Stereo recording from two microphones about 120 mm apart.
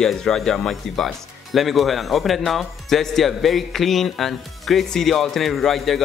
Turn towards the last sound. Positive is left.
turn(degrees=0)  # may be behind; listen again after turning